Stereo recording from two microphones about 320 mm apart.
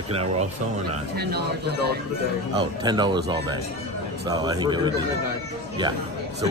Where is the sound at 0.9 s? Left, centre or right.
Right.